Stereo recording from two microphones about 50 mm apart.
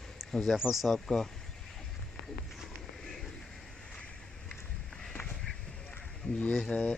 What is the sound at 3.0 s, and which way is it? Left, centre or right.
Pigeon, centre.